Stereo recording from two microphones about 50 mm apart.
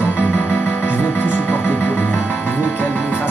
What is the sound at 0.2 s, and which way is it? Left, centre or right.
Music, left.